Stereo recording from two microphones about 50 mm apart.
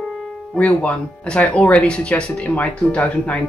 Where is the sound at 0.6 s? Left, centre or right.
Left.